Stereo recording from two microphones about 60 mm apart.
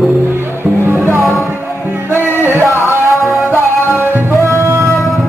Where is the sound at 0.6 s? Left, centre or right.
Right.